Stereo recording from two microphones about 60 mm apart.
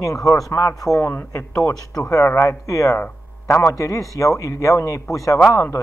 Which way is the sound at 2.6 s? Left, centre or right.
Left.